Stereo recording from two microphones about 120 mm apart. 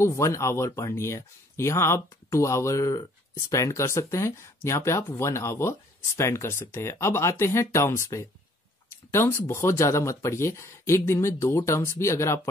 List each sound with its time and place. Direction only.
0.0 s speech: 25° left (ahead or behind)